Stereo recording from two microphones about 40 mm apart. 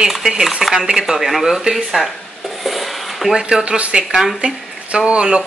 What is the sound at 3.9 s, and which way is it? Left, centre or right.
Speech, right.